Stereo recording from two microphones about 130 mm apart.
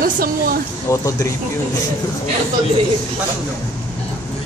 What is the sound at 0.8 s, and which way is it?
Speech, 25° left (ahead or behind).